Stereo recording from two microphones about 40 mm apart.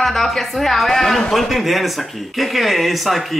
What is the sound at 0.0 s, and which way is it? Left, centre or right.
A woman's voice, centre.